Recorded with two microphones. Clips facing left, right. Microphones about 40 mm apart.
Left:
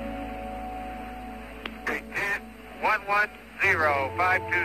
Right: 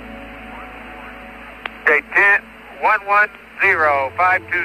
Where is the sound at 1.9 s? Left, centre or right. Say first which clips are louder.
Right 16 dB; right.